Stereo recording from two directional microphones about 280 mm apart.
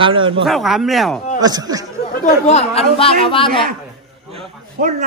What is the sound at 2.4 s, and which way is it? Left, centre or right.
Speech, left.